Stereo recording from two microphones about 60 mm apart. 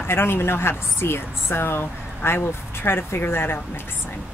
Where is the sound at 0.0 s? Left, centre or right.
Left.